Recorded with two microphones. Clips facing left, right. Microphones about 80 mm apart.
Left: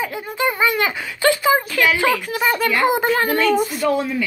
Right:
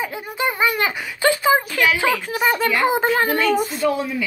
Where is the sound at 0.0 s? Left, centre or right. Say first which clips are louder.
Left 2 dB; centre.